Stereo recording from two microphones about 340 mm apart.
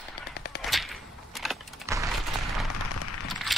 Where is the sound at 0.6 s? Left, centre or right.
Centre.